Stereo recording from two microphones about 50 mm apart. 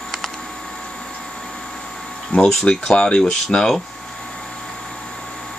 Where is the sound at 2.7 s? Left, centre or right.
Centre.